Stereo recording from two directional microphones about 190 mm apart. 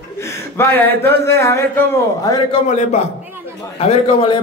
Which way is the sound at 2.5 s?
40° left (ahead or behind).